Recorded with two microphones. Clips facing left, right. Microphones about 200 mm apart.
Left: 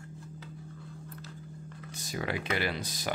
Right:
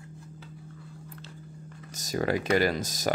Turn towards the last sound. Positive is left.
turn(degrees=-45)  # may be behind; listen again after turning